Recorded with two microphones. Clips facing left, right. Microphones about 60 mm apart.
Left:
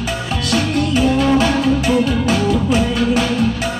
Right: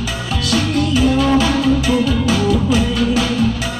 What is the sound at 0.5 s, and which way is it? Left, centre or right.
Music, left.